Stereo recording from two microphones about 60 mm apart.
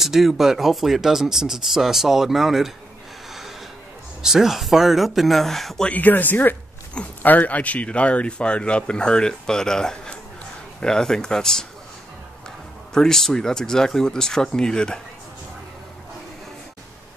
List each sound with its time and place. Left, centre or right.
0.0 s speech: centre
4.2 s speech: centre
5.9 s speech: left; by 11.6 s centre
12.9 s speech: centre